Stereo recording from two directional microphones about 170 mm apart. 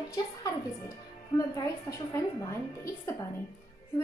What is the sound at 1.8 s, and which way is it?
Speech, 20° left (ahead or behind).